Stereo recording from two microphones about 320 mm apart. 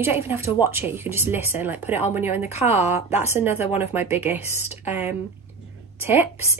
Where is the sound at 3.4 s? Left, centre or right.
Centre.